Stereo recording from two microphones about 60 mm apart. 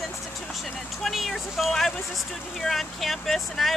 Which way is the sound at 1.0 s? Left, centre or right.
Centre.